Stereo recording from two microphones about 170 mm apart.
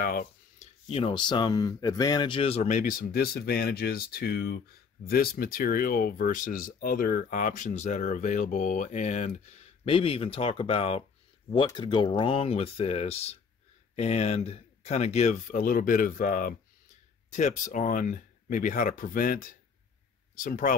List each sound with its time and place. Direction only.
0.0 s speech: 60° left (ahead or behind)
0.6 s speech: 35° left (ahead or behind); by 20.7 s 50° left (ahead or behind)